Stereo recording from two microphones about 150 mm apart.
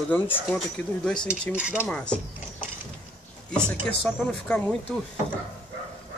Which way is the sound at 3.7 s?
5° left (ahead or behind).